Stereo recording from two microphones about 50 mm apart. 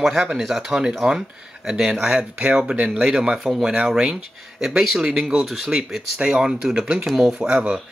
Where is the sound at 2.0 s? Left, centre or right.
Centre.